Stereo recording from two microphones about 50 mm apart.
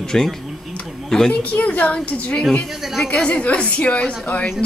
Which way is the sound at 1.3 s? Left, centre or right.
Left.